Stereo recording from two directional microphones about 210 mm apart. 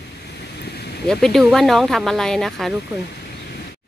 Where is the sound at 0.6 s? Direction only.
50° left (ahead or behind).